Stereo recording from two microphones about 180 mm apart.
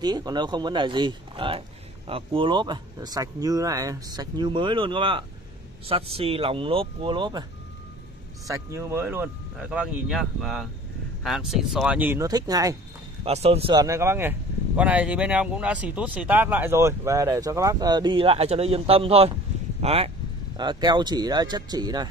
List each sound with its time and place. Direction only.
0.0 s speech: 25° right (ahead or behind)
8.5 s speech: 15° right (ahead or behind)
13.2 s speech: 35° right (ahead or behind)